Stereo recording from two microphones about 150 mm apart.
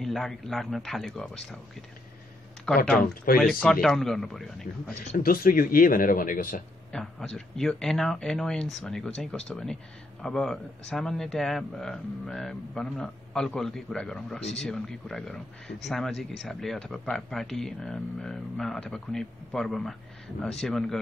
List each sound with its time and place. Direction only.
0.0 s speech: centre (ahead or behind)
2.7 s speech: 5° left (ahead or behind)
3.3 s speech: 75° left (ahead or behind)
3.8 s speech: centre (ahead or behind)
5.1 s speech: 75° left (ahead or behind)
6.9 s speech: 5° left (ahead or behind)